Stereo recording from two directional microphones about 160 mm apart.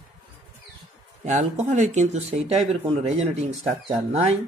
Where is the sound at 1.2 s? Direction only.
50° right (ahead or behind).